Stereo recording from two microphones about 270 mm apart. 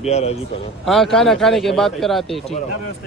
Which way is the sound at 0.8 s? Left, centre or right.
Centre.